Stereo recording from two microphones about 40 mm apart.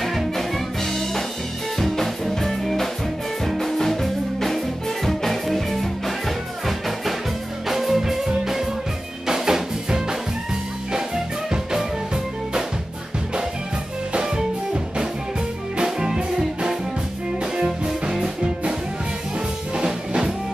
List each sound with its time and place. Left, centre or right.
0.0 s music: centre
1.8 s music: centre
7.6 s music: centre
14.1 s music: centre
17.6 s music: centre